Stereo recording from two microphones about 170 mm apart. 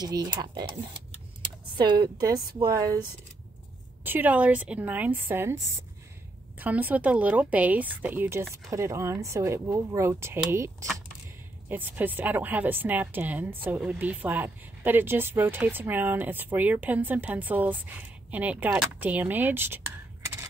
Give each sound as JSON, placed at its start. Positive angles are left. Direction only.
{"t": 0.0, "sound": "speech", "side_deg": -25}
{"t": 1.8, "sound": "speech", "side_deg": -25}
{"t": 4.0, "sound": "speech", "side_deg": -10}
{"t": 6.6, "sound": "speech", "side_deg": -10}